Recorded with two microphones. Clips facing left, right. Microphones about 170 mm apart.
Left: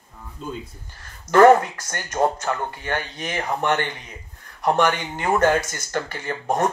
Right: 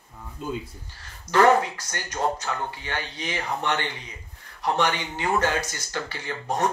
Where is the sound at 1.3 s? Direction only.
50° left (ahead or behind).